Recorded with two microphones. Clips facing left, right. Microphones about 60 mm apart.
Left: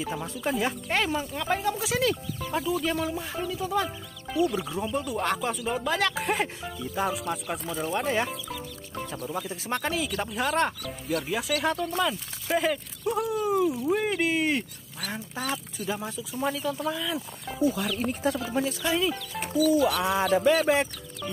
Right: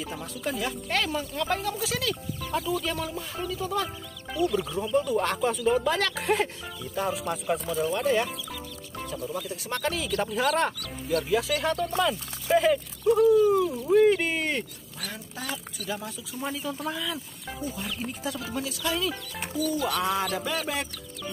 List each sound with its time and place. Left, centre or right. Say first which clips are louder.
0.0 s speech: left 3 dB; centre
2.5 s speech: left 1 dB; centre
7.6 s speech: right 1 dB; centre
9.4 s speech: left 2 dB; left
9.9 s speech: right 1 dB; centre
15.0 s speech: left 4 dB; left
16.5 s speech: left 2 dB; centre
17.7 s speech: left 5 dB; left
18.5 s speech: left 3 dB; left
19.4 s speech: left 5 dB; centre
20.0 s speech: left 3 dB; centre